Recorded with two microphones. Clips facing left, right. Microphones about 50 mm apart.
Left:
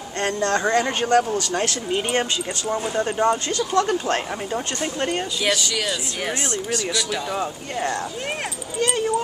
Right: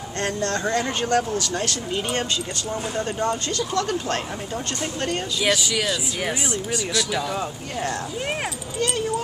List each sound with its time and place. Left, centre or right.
0.2 s speech: left
2.7 s speech: centre
5.4 s speech: centre